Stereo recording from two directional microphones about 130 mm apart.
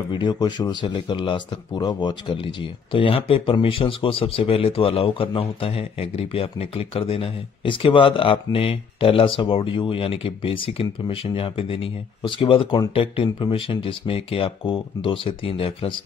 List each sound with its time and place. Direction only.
0.1 s speech: 35° left (ahead or behind)